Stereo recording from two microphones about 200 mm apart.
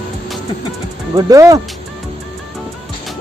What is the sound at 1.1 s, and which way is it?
Speech, 15° right (ahead or behind).